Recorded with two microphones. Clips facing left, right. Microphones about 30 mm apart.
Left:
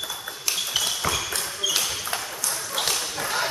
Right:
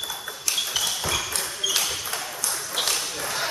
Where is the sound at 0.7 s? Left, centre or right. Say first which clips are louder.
Left 3 dB; centre.